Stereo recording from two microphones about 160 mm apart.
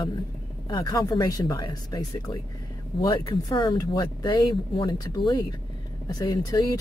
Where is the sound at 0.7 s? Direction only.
25° left (ahead or behind).